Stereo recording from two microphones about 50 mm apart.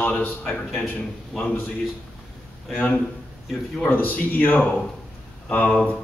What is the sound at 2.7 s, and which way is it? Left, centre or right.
A man's voice, left.